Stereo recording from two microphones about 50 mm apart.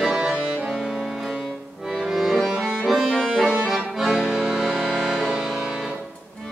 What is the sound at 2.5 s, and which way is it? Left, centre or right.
Music, centre.